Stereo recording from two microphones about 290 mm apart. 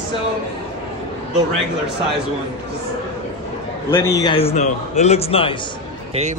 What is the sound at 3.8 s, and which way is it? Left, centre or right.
A man's voice, centre.